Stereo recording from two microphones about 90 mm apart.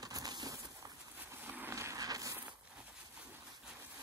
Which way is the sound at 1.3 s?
20° right (ahead or behind).